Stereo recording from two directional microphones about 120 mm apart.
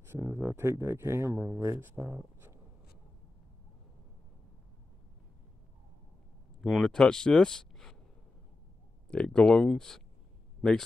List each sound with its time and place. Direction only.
0.1 s speech: 20° right (ahead or behind)
6.6 s speech: 5° left (ahead or behind)
9.1 s speech: 5° left (ahead or behind)